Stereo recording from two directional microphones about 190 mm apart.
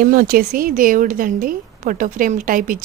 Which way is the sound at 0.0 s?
50° right (ahead or behind).